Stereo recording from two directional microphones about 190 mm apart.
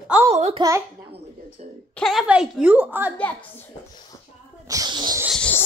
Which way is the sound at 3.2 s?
10° left (ahead or behind).